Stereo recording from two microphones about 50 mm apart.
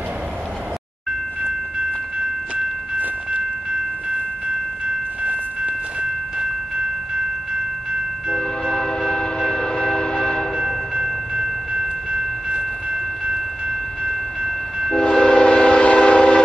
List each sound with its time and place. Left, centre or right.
3.0 s wind chime: right
5.2 s train: right
8.4 s train: centre
12.1 s train: centre
15.0 s train: centre